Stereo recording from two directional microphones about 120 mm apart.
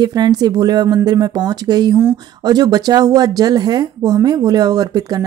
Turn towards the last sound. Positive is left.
turn(degrees=-30)  # may be behind; listen again after turning